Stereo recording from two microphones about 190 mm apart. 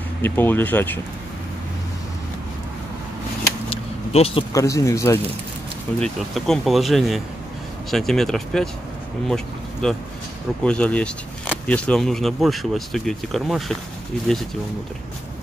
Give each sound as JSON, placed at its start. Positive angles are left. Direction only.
{"t": 0.2, "sound": "speech", "side_deg": 10}
{"t": 3.7, "sound": "a sound", "side_deg": 30}
{"t": 4.5, "sound": "speech", "side_deg": 15}
{"t": 5.9, "sound": "speech", "side_deg": 0}